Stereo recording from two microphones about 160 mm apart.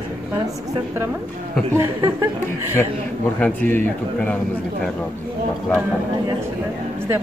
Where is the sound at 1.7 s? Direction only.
15° right (ahead or behind).